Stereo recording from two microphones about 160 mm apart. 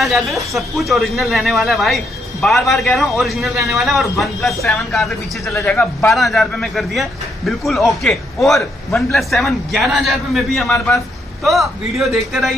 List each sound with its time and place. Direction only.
0.0 s a man's voice: centre (ahead or behind)
5.4 s a man's voice: 20° left (ahead or behind)
6.0 s a man's voice: centre (ahead or behind)